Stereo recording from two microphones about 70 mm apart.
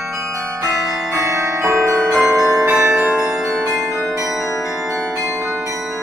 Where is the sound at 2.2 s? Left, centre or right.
Right.